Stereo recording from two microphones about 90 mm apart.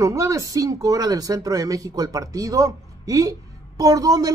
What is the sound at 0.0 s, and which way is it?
A woman's voice, 35° right (ahead or behind).